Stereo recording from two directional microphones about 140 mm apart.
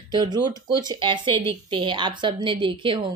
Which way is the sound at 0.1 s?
30° right (ahead or behind).